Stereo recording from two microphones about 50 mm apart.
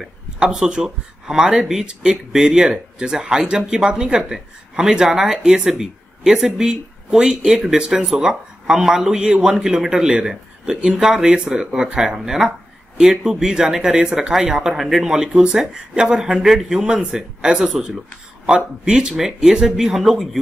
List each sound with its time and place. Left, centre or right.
0.0 s speech: centre